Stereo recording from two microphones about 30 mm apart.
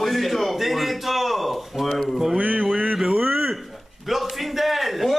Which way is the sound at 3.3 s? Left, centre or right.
Centre.